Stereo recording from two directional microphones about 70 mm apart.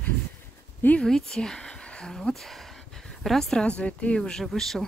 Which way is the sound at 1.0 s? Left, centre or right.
Centre.